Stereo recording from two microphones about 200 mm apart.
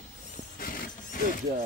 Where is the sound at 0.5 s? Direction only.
40° left (ahead or behind).